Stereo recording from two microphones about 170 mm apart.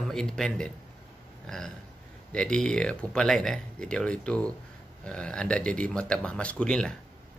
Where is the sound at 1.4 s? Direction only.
5° left (ahead or behind).